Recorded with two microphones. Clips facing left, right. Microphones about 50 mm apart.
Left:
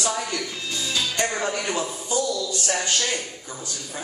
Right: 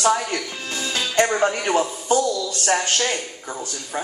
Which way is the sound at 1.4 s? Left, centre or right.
Right.